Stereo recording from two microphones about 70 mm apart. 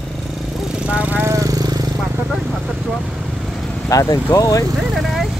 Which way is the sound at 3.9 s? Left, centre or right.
Left.